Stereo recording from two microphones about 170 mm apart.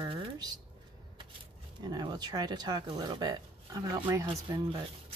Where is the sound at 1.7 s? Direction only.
25° right (ahead or behind).